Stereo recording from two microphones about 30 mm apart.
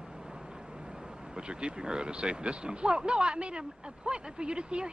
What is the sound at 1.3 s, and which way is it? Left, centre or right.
Speech, right.